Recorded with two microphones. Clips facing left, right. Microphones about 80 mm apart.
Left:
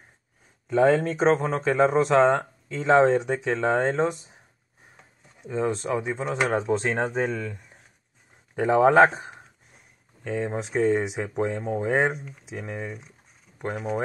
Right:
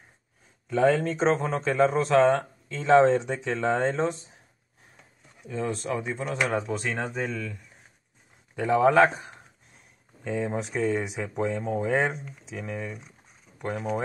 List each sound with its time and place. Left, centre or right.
0.7 s speech: centre
5.4 s speech: left
8.5 s speech: left
10.2 s speech: centre
10.5 s speech: left
13.5 s a sound: right